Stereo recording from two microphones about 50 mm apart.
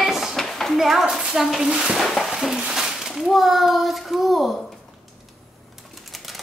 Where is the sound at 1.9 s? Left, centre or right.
Centre.